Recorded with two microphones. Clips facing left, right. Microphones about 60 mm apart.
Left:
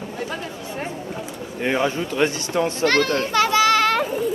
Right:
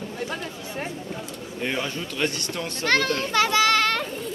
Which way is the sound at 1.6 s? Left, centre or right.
Left.